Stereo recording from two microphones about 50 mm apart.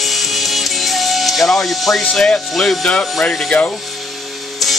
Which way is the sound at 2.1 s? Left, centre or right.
Centre.